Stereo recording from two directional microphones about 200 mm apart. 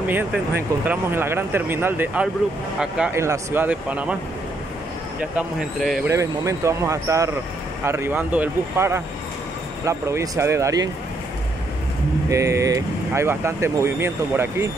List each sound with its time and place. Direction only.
0.1 s speech: 10° right (ahead or behind)
5.3 s speech: centre (ahead or behind)
6.0 s speech: 15° right (ahead or behind)
12.3 s speech: 15° right (ahead or behind)